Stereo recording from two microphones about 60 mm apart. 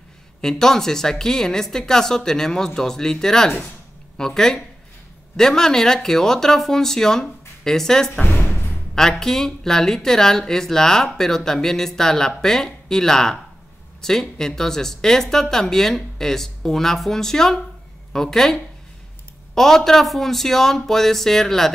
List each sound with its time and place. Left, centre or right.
0.4 s speech: centre
8.2 s speech: left
8.9 s speech: centre